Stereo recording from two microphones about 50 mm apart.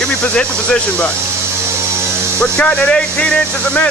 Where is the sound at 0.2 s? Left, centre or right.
Left.